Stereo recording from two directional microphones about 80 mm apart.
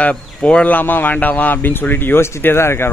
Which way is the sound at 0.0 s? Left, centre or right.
Centre.